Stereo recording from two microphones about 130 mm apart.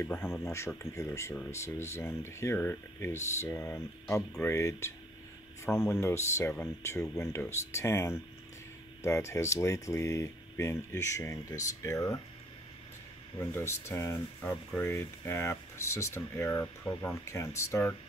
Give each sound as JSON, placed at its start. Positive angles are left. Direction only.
{"t": 0.0, "sound": "speech", "side_deg": 20}
{"t": 13.4, "sound": "speech", "side_deg": 20}